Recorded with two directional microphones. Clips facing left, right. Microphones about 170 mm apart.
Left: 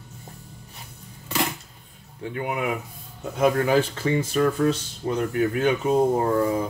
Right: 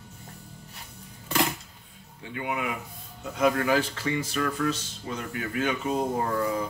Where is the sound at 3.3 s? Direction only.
30° left (ahead or behind).